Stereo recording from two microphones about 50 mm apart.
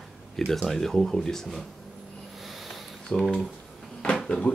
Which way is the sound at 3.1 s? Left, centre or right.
Centre.